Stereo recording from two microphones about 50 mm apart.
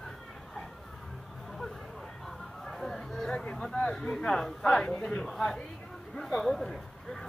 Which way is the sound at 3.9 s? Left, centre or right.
Centre.